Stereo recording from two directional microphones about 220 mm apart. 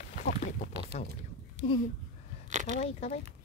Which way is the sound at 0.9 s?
30° left (ahead or behind).